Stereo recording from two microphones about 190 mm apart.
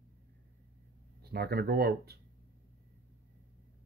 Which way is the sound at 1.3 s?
55° right (ahead or behind).